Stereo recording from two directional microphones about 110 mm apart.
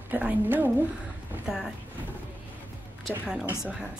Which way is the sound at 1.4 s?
5° right (ahead or behind).